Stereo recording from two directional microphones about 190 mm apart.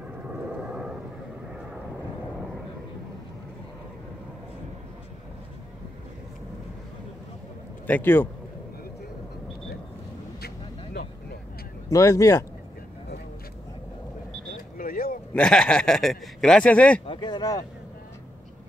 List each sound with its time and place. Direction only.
0.5 s vehicle: 5° right (ahead or behind)
7.8 s speech: 10° left (ahead or behind)
10.4 s vehicle: 55° left (ahead or behind)
11.9 s speech: 15° left (ahead or behind)
14.5 s vehicle: 45° left (ahead or behind)
15.3 s speech: 5° left (ahead or behind)
17.0 s speech: 25° left (ahead or behind)